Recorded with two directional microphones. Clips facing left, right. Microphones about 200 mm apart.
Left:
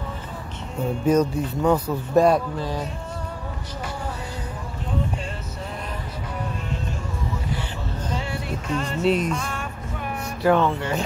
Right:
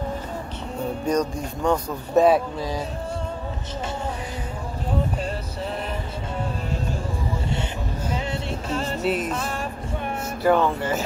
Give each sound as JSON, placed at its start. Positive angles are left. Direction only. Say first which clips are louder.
{"t": 1.0, "sound": "speech", "louder": "left 5 dB", "side_deg": 5}
{"t": 8.3, "sound": "music", "louder": "even", "side_deg": -30}
{"t": 9.0, "sound": "speech", "louder": "left 5 dB", "side_deg": -5}
{"t": 10.4, "sound": "speech", "louder": "even", "side_deg": 0}